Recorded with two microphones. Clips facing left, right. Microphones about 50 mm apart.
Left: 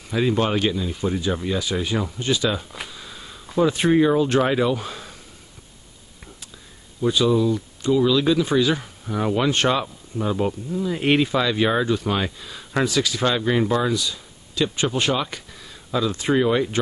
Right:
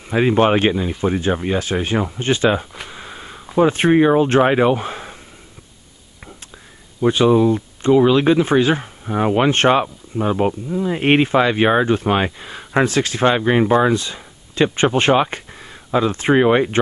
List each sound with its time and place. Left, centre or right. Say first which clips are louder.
0.1 s speech: right 6 dB; right
2.9 s sniff: right 5 dB; right
3.5 s speech: right 4 dB; right
7.0 s speech: right 5 dB; right